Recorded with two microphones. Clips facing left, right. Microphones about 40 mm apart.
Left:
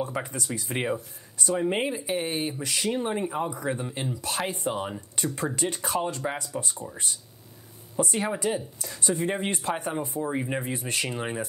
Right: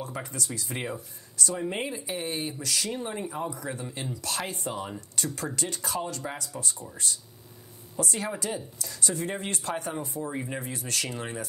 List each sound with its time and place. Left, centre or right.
0.0 s speech: left
4.6 s speech: left